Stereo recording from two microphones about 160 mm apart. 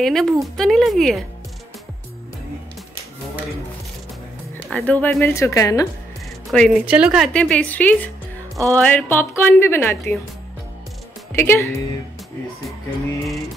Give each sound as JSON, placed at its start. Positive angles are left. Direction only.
{"t": 0.0, "sound": "speech", "side_deg": 0}
{"t": 4.6, "sound": "a woman's voice", "side_deg": 5}
{"t": 6.5, "sound": "speech", "side_deg": 5}
{"t": 6.9, "sound": "speech", "side_deg": -5}
{"t": 7.3, "sound": "a woman's voice", "side_deg": 5}
{"t": 11.3, "sound": "a woman's voice", "side_deg": 15}